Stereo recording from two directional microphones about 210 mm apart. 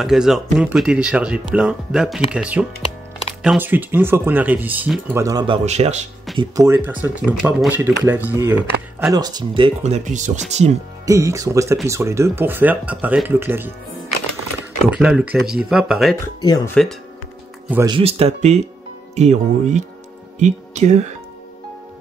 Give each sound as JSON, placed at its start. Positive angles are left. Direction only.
{"t": 0.0, "sound": "speech", "side_deg": 0}
{"t": 5.7, "sound": "speech", "side_deg": -30}
{"t": 6.3, "sound": "speech", "side_deg": -15}
{"t": 11.1, "sound": "speech", "side_deg": -15}
{"t": 14.9, "sound": "speech", "side_deg": -5}
{"t": 16.3, "sound": "speech", "side_deg": 20}
{"t": 17.8, "sound": "speech", "side_deg": -25}